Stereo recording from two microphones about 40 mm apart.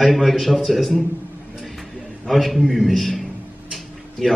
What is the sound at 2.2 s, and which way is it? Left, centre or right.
Speech, centre.